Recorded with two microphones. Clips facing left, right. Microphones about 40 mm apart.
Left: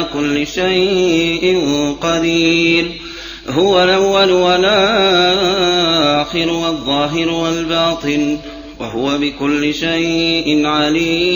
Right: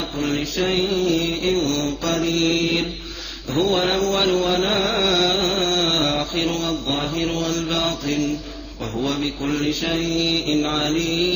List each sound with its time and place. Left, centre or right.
0.0 s music: left